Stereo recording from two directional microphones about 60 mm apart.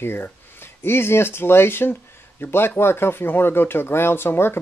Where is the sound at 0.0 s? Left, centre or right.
Left.